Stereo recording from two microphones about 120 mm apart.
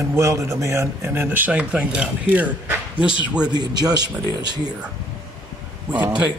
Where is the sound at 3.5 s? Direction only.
35° right (ahead or behind).